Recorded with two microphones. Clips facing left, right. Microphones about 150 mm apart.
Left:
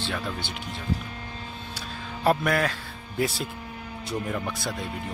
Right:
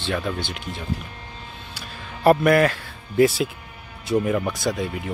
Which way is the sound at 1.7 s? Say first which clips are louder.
Even; 65° right (ahead or behind).